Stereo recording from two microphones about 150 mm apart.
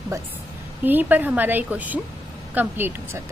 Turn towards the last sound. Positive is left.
turn(degrees=-15)  # may be behind; listen again after turning